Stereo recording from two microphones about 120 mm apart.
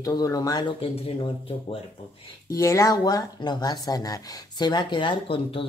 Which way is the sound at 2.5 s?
25° left (ahead or behind).